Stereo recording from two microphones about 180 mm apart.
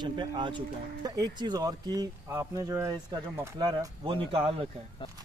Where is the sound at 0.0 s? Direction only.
25° right (ahead or behind).